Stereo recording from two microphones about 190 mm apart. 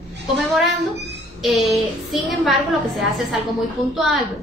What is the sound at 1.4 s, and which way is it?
A woman's voice, centre (ahead or behind).